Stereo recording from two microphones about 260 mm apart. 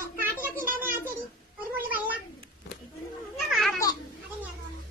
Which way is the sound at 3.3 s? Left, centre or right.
Centre.